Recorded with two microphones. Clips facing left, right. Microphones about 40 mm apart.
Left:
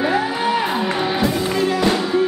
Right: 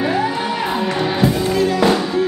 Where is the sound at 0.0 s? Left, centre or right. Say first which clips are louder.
Even; centre.